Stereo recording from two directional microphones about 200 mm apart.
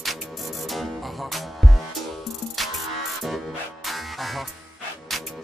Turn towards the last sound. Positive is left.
turn(degrees=0)  # may be behind; listen again after turning